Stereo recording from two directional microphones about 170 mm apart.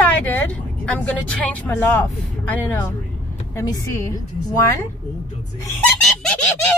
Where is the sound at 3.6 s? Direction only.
20° left (ahead or behind).